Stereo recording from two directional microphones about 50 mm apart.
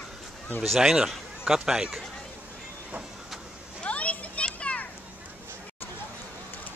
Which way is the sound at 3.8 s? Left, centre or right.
Left.